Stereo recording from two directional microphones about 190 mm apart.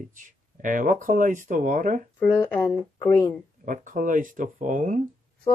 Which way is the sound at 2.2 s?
10° left (ahead or behind).